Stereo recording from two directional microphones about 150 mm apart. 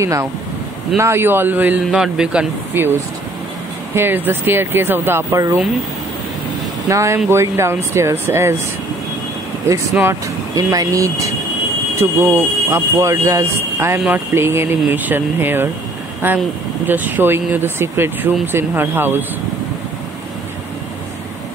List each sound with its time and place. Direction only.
0.0 s speech: 20° right (ahead or behind)
6.9 s speech: 20° right (ahead or behind)
9.7 s speech: 20° right (ahead or behind)